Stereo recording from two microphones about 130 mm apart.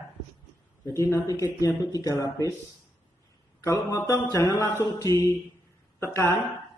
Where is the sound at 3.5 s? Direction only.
25° left (ahead or behind).